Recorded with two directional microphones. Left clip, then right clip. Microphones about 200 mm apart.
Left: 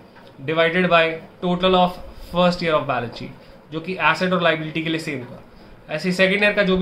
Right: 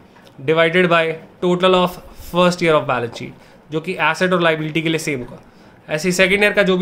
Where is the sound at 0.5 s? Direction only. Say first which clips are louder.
Right 3 dB; 50° right (ahead or behind).